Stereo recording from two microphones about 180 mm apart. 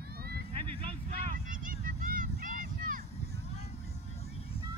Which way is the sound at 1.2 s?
50° right (ahead or behind).